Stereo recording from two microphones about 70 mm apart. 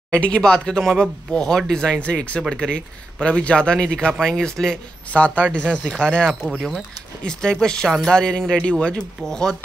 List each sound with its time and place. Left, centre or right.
0.1 s speech: centre
5.1 s speech: centre
6.4 s speech: centre
7.2 s speech: centre